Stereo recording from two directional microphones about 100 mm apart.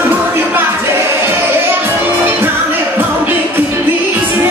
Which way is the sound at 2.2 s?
20° right (ahead or behind).